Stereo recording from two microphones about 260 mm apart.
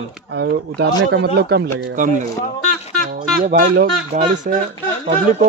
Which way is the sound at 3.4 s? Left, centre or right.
Right.